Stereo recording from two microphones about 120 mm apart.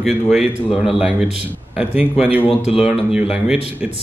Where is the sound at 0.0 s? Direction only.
Centre (ahead or behind).